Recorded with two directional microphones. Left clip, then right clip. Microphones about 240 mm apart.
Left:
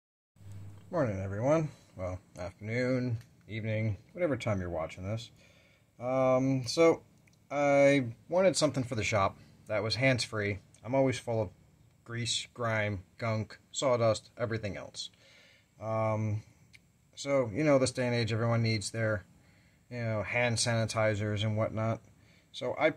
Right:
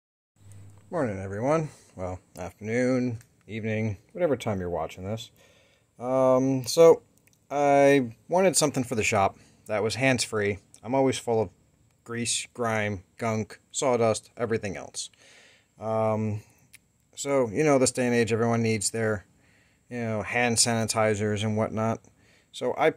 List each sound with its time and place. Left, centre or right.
0.8 s speech: right